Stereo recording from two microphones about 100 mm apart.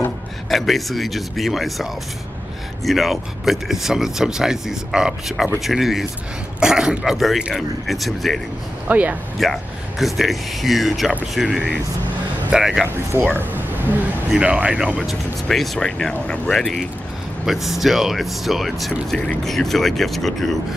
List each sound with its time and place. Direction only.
0.5 s speech: centre (ahead or behind)
8.8 s speech: 15° right (ahead or behind)
9.4 s speech: centre (ahead or behind)
13.1 s speech: 25° right (ahead or behind)
14.3 s speech: 10° right (ahead or behind)
15.0 s speech: 5° left (ahead or behind)